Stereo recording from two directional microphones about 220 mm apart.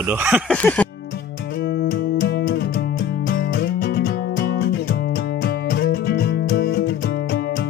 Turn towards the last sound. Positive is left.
turn(degrees=45)  # may be behind; listen again after turning